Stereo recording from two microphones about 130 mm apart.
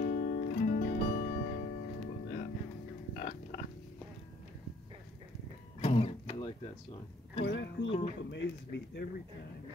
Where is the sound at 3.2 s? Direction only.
65° left (ahead or behind).